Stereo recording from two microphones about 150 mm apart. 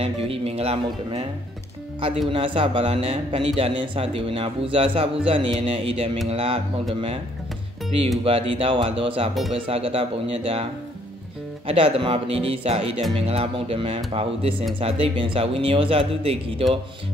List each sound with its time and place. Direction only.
0.0 s a man's voice: 40° right (ahead or behind)
2.3 s a man's voice: 35° right (ahead or behind)
8.2 s a man's voice: 40° right (ahead or behind)